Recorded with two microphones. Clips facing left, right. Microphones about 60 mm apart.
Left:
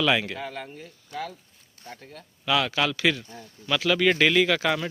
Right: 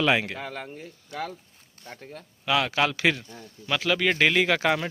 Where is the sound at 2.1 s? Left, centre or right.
Centre.